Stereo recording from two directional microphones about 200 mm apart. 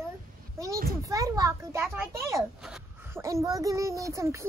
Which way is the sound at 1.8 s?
5° right (ahead or behind).